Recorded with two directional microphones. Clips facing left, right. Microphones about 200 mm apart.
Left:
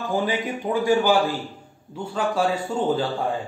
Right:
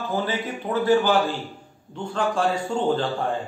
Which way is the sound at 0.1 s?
15° left (ahead or behind).